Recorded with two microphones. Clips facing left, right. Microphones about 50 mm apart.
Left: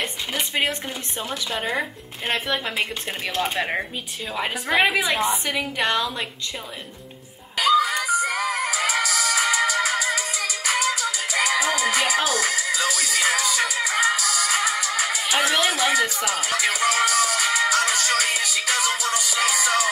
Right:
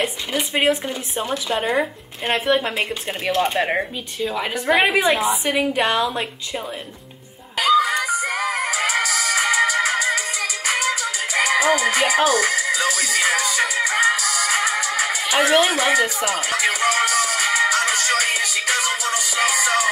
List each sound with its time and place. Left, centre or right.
0.8 s speech: centre
2.9 s speech: centre
4.7 s speech: centre
5.5 s speech: centre
7.5 s music: right